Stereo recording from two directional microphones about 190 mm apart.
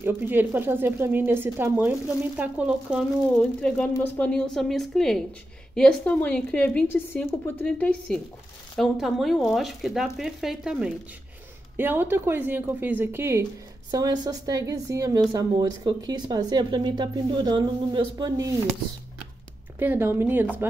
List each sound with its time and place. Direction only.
0.0 s speech: 10° right (ahead or behind)
3.6 s a woman's voice: 5° left (ahead or behind); by 18.6 s 20° right (ahead or behind)
19.8 s speech: 10° right (ahead or behind)